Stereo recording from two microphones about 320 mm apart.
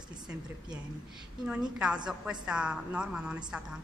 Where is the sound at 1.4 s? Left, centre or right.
Centre.